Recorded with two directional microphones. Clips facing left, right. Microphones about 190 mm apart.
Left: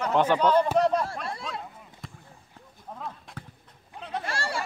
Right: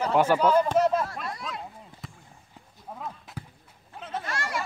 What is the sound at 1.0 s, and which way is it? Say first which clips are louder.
Speech: left 1 dB; 25° left (ahead or behind).